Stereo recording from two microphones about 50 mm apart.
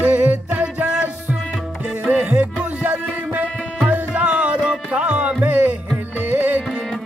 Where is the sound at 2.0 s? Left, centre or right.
Right.